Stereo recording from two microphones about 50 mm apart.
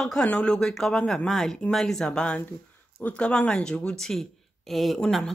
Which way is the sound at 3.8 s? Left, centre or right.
Centre.